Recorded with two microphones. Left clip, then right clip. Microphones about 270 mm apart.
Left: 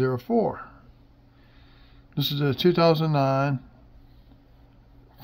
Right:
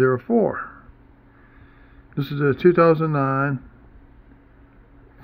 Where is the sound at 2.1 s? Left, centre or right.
Centre.